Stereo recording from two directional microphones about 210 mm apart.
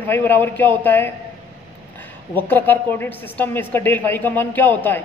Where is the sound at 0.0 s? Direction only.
10° left (ahead or behind).